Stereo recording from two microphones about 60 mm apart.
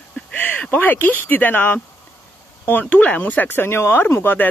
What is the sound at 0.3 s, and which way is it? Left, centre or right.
Speech, left.